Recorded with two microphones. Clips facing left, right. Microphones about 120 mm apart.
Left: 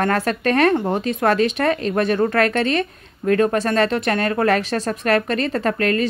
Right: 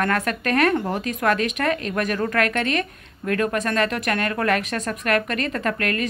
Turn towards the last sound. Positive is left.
turn(degrees=30)  # may be behind; listen again after turning